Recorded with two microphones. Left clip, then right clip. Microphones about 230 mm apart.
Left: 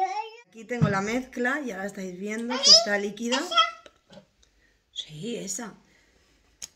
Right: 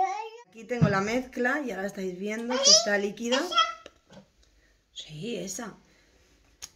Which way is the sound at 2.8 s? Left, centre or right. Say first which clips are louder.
Even; centre.